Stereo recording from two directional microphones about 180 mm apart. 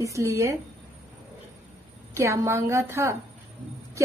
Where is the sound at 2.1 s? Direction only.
15° right (ahead or behind).